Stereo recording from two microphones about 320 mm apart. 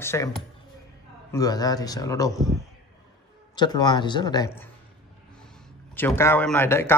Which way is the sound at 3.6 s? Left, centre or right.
Centre.